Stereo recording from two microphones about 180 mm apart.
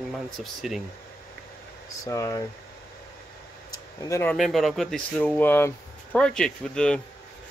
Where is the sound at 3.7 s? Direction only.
20° left (ahead or behind).